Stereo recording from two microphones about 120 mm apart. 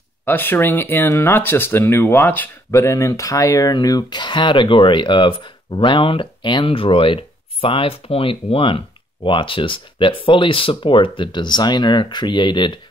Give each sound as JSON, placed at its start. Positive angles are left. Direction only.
{"t": 0.2, "sound": "speech", "side_deg": 15}